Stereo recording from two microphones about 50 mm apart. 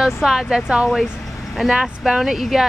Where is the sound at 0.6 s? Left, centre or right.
Centre.